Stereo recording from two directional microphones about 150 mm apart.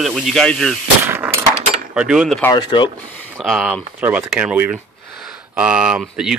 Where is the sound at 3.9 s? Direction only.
15° right (ahead or behind).